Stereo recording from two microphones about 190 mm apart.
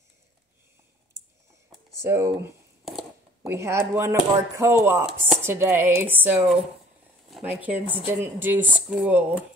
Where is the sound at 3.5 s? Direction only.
15° right (ahead or behind).